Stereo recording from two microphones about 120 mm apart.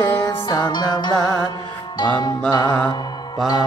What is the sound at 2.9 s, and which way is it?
Mantra, 35° left (ahead or behind).